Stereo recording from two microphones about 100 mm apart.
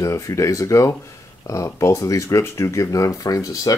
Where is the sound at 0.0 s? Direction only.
30° left (ahead or behind).